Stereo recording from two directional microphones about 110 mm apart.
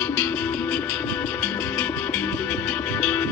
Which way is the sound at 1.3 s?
15° left (ahead or behind).